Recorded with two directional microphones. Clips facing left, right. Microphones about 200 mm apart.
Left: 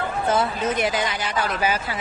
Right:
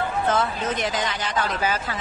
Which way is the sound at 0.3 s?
10° left (ahead or behind).